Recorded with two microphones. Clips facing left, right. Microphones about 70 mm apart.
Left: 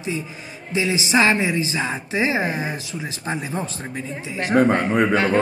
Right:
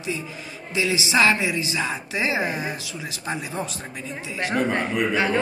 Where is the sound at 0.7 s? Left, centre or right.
Left.